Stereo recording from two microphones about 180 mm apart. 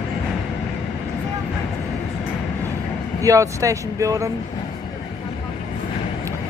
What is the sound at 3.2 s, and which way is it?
Speech, 15° right (ahead or behind).